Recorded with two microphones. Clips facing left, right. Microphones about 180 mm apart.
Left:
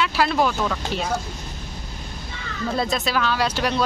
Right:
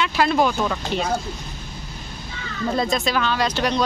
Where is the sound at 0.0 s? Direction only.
Centre (ahead or behind).